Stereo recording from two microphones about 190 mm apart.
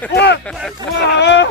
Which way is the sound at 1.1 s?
65° left (ahead or behind).